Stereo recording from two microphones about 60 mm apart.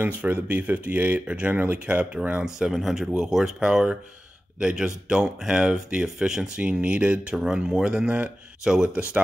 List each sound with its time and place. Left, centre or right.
0.2 s speech: right
2.7 s speech: centre